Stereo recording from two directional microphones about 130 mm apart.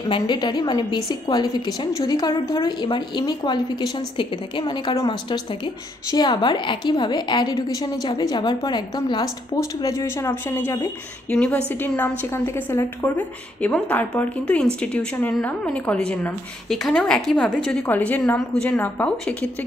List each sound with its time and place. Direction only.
0.1 s a woman's voice: 35° left (ahead or behind)
11.2 s a woman's voice: 10° left (ahead or behind)